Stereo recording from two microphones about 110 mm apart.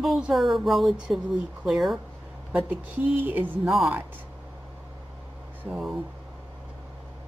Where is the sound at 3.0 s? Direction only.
15° right (ahead or behind).